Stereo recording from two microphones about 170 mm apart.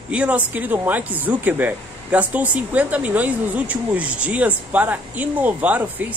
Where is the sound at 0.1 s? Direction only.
5° right (ahead or behind).